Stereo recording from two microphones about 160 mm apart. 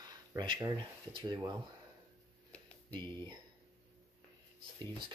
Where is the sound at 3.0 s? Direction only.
30° right (ahead or behind).